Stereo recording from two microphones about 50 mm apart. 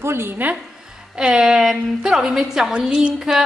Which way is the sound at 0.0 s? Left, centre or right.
Right.